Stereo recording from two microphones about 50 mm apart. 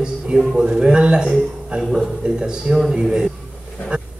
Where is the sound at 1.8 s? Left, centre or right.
Centre.